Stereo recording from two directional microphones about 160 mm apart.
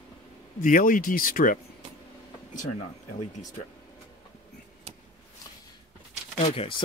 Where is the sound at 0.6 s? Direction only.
55° left (ahead or behind).